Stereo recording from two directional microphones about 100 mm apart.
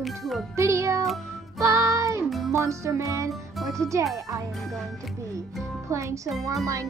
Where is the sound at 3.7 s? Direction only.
30° right (ahead or behind).